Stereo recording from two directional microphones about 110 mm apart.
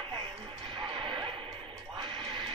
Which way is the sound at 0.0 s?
45° right (ahead or behind).